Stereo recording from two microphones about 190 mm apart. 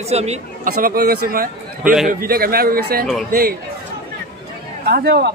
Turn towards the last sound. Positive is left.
turn(degrees=-60)  # may be behind; listen again after turning